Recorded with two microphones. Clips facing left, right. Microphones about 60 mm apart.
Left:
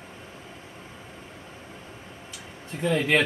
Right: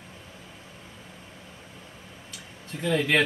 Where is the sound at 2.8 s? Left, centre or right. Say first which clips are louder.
Left 1 dB; left.